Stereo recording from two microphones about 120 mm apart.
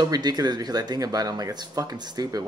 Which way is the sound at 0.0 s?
35° right (ahead or behind).